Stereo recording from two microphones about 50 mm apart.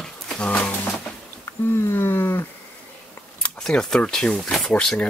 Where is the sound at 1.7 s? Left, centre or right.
Left.